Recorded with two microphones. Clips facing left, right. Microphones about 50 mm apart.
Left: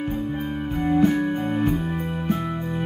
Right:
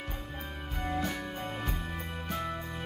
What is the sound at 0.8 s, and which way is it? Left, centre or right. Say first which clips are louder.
Music: left 14 dB; left.